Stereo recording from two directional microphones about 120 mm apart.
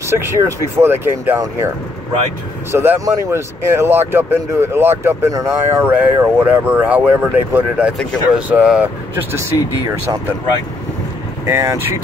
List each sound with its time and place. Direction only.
0.1 s speech: 25° right (ahead or behind)
2.7 s speech: 20° right (ahead or behind)
5.9 s speech: 15° right (ahead or behind)
11.4 s speech: 25° right (ahead or behind)